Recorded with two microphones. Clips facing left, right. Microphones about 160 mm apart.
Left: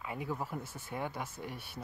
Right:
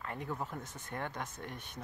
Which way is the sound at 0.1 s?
5° left (ahead or behind).